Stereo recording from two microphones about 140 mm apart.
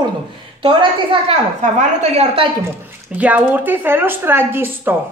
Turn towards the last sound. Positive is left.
turn(degrees=-15)  # may be behind; listen again after turning